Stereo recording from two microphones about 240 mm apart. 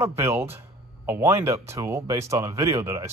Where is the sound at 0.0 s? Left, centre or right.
Centre.